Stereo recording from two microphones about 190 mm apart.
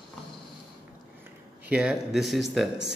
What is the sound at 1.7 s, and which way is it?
Speech, 5° right (ahead or behind).